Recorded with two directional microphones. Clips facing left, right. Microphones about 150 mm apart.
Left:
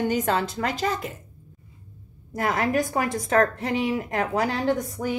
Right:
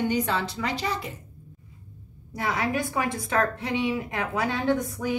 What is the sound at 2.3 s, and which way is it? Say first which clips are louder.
A woman's voice: left 4 dB; 45° left (ahead or behind).